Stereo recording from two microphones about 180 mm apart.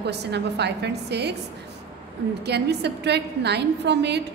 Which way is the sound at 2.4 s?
70° right (ahead or behind).